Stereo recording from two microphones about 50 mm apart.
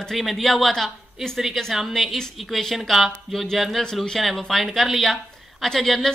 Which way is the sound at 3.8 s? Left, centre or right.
Centre.